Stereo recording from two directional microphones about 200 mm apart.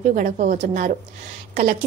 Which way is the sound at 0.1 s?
40° right (ahead or behind).